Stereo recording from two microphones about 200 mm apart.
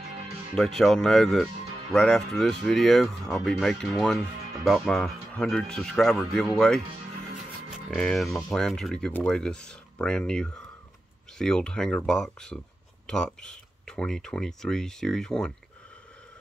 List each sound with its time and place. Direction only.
0.7 s speech: centre (ahead or behind)